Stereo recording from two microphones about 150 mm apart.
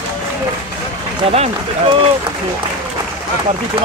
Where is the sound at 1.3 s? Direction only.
45° right (ahead or behind).